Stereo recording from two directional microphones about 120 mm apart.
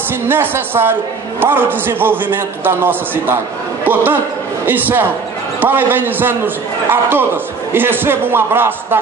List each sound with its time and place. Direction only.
0.3 s a woman's voice: 20° right (ahead or behind)